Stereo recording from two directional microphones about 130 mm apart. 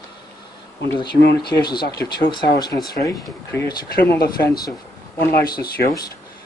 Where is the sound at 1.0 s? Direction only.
35° left (ahead or behind).